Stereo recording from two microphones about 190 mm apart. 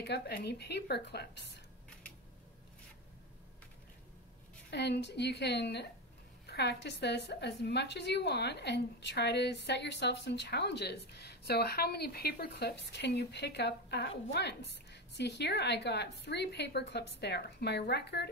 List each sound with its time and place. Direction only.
0.0 s a woman's voice: 60° left (ahead or behind)
4.6 s a woman's voice: 65° left (ahead or behind)